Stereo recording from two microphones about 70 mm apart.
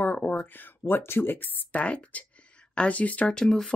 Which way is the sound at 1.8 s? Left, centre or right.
Centre.